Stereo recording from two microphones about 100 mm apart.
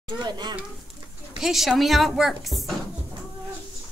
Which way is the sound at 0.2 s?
45° right (ahead or behind).